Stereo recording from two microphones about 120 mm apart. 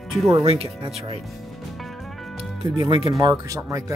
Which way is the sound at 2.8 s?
50° right (ahead or behind).